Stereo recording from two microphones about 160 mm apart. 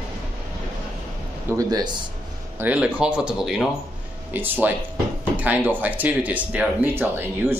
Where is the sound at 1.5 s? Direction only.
25° right (ahead or behind).